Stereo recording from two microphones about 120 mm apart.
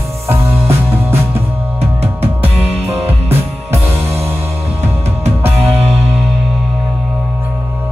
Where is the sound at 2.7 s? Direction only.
60° right (ahead or behind).